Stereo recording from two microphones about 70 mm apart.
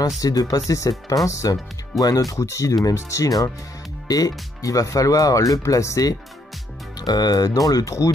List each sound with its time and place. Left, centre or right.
0.2 s speech: left
7.0 s speech: left